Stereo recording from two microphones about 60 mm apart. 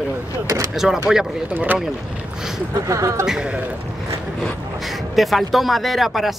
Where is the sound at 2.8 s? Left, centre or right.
Right.